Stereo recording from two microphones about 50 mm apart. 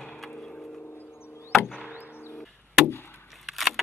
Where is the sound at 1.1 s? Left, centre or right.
Left.